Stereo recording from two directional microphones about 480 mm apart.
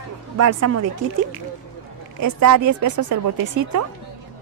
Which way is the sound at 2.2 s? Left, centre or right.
Right.